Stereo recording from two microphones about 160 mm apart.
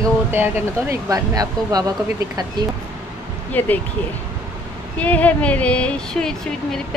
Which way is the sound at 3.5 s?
10° left (ahead or behind).